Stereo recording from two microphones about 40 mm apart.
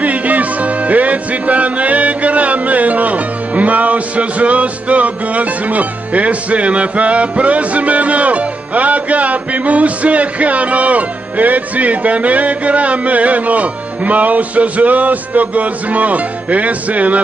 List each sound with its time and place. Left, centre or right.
0.0 s music: right